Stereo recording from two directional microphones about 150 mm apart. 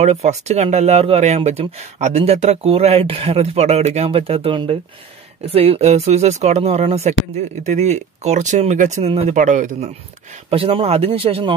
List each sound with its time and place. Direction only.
0.0 s speech: 50° right (ahead or behind)
10.5 s speech: 40° right (ahead or behind)